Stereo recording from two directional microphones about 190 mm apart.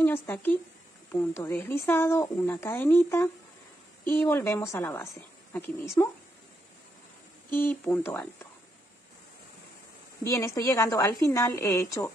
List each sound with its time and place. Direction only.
0.0 s a woman's voice: 10° left (ahead or behind)
7.5 s a woman's voice: 10° left (ahead or behind)
10.2 s a woman's voice: 15° left (ahead or behind)